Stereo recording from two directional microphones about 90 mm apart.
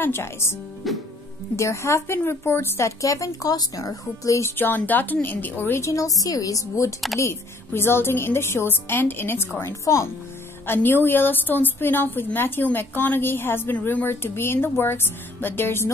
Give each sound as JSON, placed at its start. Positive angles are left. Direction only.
{"t": 0.0, "sound": "a woman's voice", "side_deg": 25}
{"t": 0.8, "sound": "music", "side_deg": 0}
{"t": 1.6, "sound": "speech", "side_deg": 30}
{"t": 4.6, "sound": "a woman's voice", "side_deg": 20}
{"t": 5.9, "sound": "a woman's voice", "side_deg": 40}